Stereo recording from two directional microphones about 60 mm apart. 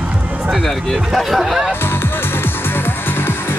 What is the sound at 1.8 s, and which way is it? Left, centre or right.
Music, left.